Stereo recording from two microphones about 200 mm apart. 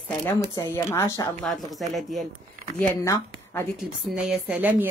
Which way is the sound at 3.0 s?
15° left (ahead or behind).